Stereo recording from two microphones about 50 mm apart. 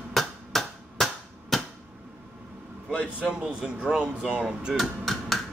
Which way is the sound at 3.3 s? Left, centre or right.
Centre.